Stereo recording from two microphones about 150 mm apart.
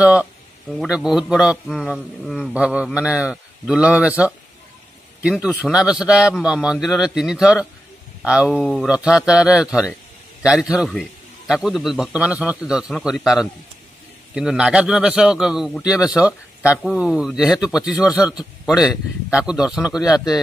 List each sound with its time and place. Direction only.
0.0 s a man's voice: 5° right (ahead or behind)